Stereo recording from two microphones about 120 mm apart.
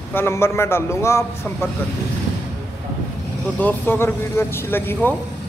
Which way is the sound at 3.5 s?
15° left (ahead or behind).